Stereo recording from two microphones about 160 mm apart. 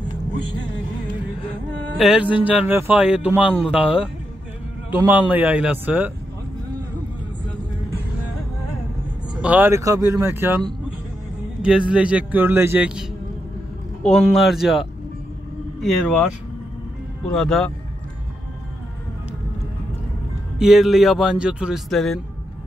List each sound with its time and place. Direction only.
2.0 s speech: 5° right (ahead or behind)
9.3 s speech: 10° right (ahead or behind)
11.9 s speech: 5° right (ahead or behind)
14.0 s speech: centre (ahead or behind)
17.3 s speech: 5° left (ahead or behind)
20.5 s speech: centre (ahead or behind)